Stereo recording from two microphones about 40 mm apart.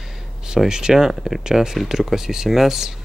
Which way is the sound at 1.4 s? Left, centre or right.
Centre.